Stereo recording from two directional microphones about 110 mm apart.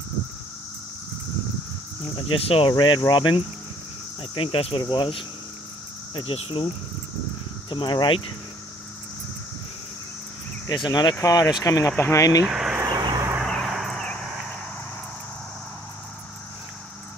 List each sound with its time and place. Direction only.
2.1 s speech: 55° left (ahead or behind)
2.8 s speech: 45° left (ahead or behind)
4.2 s speech: 55° left (ahead or behind)
4.7 s speech: 45° left (ahead or behind)
7.7 s speech: 45° left (ahead or behind)
10.7 s speech: 40° left (ahead or behind)
11.1 s speech: 25° left (ahead or behind)
12.4 s speech: 5° right (ahead or behind)
12.9 s vehicle: 40° right (ahead or behind)
13.5 s a sound: centre (ahead or behind)